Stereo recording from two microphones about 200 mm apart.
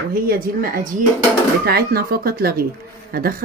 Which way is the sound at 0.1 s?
50° right (ahead or behind).